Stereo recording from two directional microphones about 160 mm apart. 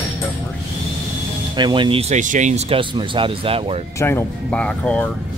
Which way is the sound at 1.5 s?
30° right (ahead or behind).